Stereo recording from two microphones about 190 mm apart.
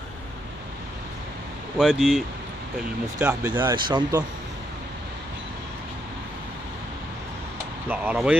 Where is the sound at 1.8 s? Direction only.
Centre (ahead or behind).